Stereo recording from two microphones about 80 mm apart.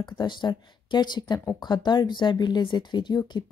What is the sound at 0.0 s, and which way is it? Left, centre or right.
Speech, left.